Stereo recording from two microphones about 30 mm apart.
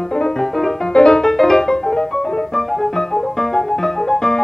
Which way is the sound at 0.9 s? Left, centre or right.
Left.